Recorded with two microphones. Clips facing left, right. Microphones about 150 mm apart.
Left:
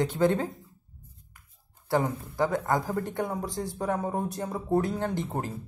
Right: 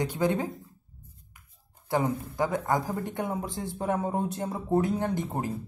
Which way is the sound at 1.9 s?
20° right (ahead or behind).